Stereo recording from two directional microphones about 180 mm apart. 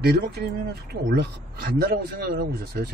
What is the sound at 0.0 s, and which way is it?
Speech, 60° right (ahead or behind).